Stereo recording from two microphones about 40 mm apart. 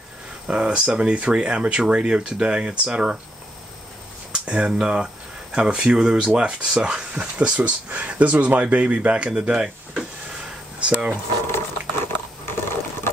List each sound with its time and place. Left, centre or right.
0.5 s speech: right
4.5 s speech: right
10.8 s speech: right
11.4 s a sound: left